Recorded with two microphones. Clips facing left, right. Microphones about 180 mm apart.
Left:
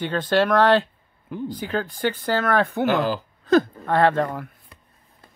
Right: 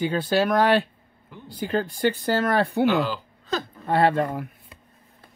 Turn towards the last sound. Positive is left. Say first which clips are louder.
# right 1 dB
turn(degrees=-15)  # may be behind; listen again after turning